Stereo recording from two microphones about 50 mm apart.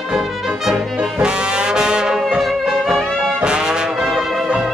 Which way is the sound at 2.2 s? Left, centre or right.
Centre.